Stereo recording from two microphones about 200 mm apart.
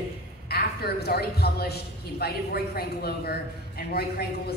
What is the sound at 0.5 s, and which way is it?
A man's voice, 50° left (ahead or behind).